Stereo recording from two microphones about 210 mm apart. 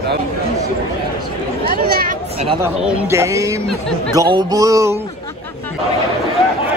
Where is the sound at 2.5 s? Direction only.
10° right (ahead or behind).